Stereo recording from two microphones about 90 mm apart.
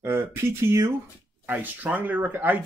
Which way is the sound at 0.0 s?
30° right (ahead or behind).